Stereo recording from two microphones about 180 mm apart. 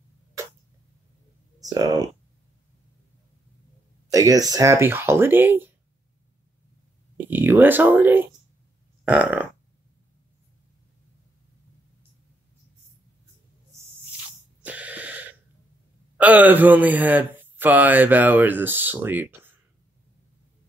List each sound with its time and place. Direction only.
1.6 s speech: 20° right (ahead or behind)
4.1 s speech: 20° right (ahead or behind)
7.2 s speech: 10° right (ahead or behind)
9.0 s burping: 10° right (ahead or behind)
14.6 s a sound: 10° right (ahead or behind)
16.2 s speech: 10° right (ahead or behind)